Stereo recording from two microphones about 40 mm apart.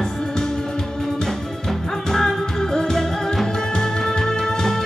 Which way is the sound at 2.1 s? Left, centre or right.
Centre.